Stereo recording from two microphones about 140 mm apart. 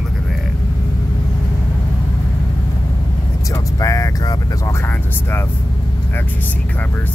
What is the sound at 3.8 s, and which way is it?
Vehicle, 25° left (ahead or behind).